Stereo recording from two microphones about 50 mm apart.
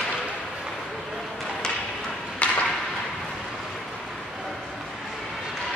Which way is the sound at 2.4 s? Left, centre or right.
Left.